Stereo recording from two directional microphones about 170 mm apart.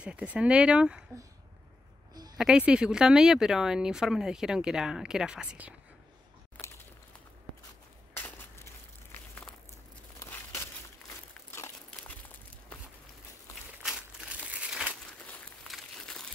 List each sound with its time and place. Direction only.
0.0 s speech: 5° right (ahead or behind)
2.3 s speech: 5° right (ahead or behind)
6.6 s a sound: 5° left (ahead or behind)
10.1 s crumpling: 15° left (ahead or behind)
13.8 s crumpling: 5° right (ahead or behind)